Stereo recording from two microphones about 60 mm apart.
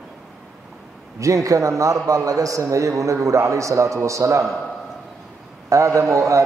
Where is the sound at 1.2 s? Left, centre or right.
Right.